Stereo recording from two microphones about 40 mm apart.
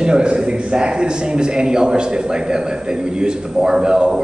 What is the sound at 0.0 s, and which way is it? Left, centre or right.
A man's voice, right.